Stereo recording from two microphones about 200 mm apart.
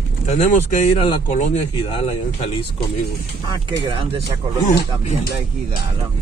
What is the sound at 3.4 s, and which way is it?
Speech, 20° right (ahead or behind).